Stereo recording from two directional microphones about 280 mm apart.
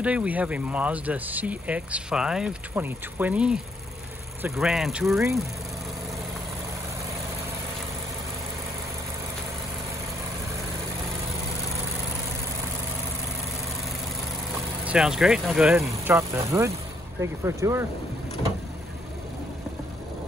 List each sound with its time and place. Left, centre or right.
0.0 s speech: centre
14.9 s speech: centre